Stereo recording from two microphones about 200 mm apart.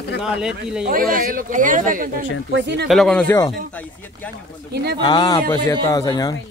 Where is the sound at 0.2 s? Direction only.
5° right (ahead or behind).